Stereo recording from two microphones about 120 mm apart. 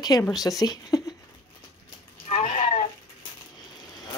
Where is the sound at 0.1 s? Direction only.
25° left (ahead or behind).